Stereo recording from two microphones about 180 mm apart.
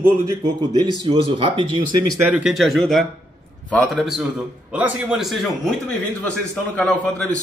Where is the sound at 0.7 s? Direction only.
25° right (ahead or behind).